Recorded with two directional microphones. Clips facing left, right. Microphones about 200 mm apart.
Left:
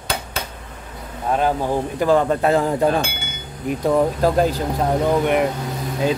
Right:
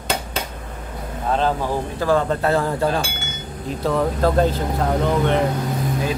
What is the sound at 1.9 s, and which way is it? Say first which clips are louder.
Speech: left 2 dB; 15° left (ahead or behind).